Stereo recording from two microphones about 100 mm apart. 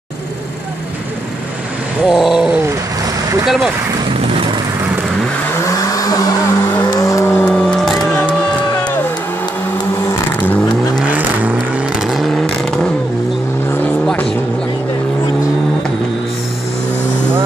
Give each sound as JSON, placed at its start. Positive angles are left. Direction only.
{"t": 2.0, "sound": "a sound", "side_deg": -5}
{"t": 3.4, "sound": "speech", "side_deg": 0}
{"t": 5.6, "sound": "vehicle", "side_deg": 35}
{"t": 7.4, "sound": "music", "side_deg": 0}
{"t": 11.1, "sound": "vehicle", "side_deg": -15}
{"t": 12.1, "sound": "vehicle", "side_deg": 0}